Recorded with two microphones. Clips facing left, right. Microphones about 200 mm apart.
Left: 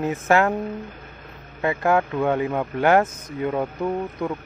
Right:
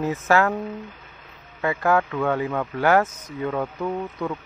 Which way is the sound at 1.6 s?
25° left (ahead or behind).